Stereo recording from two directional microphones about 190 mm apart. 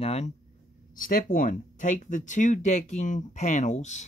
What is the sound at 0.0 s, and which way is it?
Speech, 35° left (ahead or behind).